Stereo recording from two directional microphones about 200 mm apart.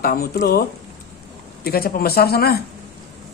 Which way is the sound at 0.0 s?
50° left (ahead or behind).